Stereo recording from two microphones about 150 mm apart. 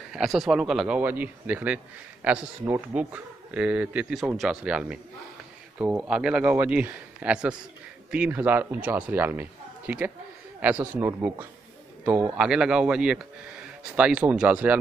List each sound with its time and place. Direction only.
0.1 s speech: centre (ahead or behind)